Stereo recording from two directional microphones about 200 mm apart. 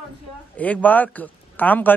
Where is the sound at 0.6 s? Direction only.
10° left (ahead or behind).